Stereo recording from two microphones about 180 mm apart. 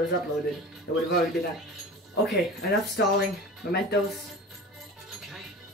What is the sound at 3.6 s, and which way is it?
Speech, 65° left (ahead or behind).